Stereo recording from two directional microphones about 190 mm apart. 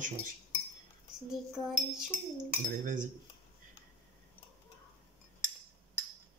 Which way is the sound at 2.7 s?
45° right (ahead or behind).